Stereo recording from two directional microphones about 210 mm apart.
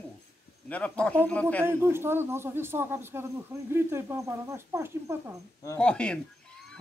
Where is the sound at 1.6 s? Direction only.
10° right (ahead or behind).